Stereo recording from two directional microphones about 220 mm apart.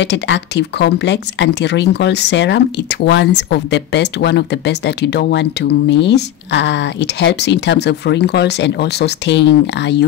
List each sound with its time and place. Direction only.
0.0 s speech: 50° left (ahead or behind)